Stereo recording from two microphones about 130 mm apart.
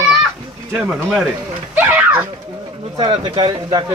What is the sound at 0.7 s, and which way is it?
Speech, 5° right (ahead or behind).